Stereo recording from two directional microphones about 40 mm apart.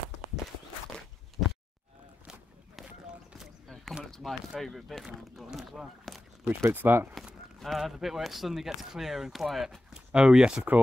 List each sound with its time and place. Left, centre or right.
4.1 s a sound: centre
4.6 s speech: centre
5.0 s speech: centre
6.1 s a sound: centre
6.4 s speech: right
7.6 s speech: centre
10.1 s speech: right